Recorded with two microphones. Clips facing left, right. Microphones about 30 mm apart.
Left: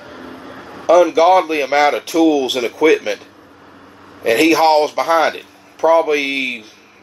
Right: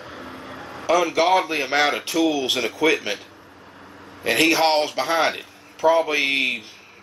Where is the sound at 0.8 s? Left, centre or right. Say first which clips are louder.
Left 8 dB; centre.